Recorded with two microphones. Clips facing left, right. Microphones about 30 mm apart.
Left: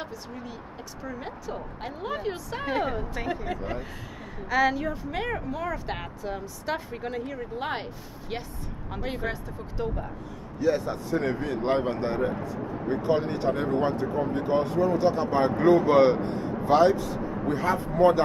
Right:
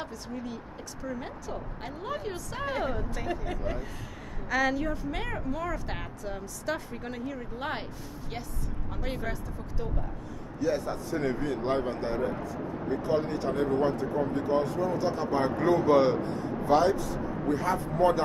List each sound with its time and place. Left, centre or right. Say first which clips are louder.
0.0 s speech: even; centre
10.6 s speech: left 4 dB; left